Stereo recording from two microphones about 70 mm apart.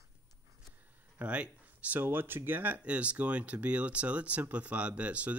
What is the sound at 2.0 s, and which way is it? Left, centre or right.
Speech, right.